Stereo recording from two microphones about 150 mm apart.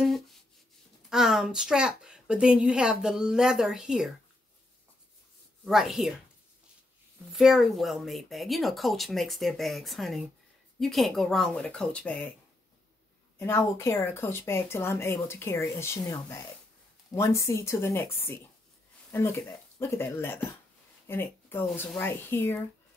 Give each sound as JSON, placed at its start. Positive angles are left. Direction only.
{"t": 0.0, "sound": "rub", "side_deg": 0}
{"t": 1.1, "sound": "a woman's voice", "side_deg": -5}
{"t": 5.7, "sound": "a woman's voice", "side_deg": 0}
{"t": 7.3, "sound": "a woman's voice", "side_deg": 0}
{"t": 13.4, "sound": "speech", "side_deg": 20}